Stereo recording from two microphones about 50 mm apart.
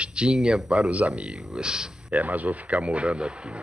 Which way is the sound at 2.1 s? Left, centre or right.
Right.